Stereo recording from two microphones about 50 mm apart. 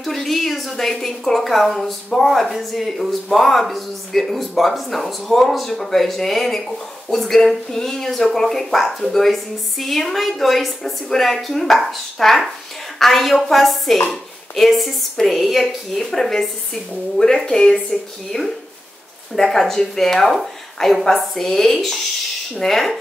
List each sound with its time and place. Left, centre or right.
0.0 s a woman's voice: centre
18.3 s speech: left
19.3 s a woman's voice: centre